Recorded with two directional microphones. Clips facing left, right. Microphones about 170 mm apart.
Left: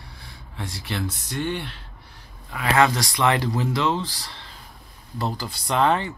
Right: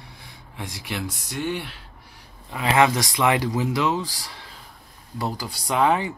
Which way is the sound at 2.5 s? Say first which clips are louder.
Right 1 dB; 20° right (ahead or behind).